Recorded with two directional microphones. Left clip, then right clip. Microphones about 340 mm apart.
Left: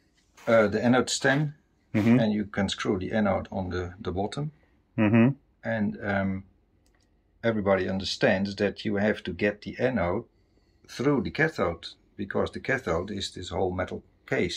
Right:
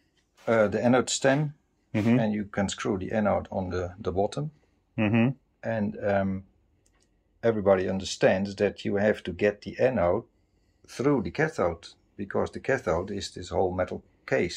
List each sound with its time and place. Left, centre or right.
0.5 s speech: centre
4.9 s a sound: centre
5.6 s speech: centre